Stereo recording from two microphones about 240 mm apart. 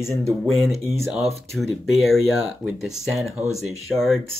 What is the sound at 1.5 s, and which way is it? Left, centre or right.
Speech, centre.